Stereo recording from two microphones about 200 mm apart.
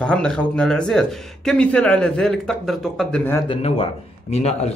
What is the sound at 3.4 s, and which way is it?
A man's voice, 25° left (ahead or behind).